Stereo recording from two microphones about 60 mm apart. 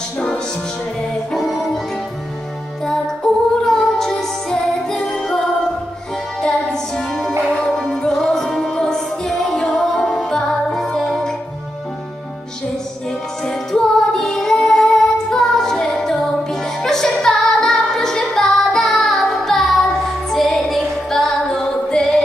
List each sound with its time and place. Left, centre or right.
1.3 s music: centre
3.6 s music: centre
6.4 s music: centre
13.4 s music: centre
21.5 s singing: centre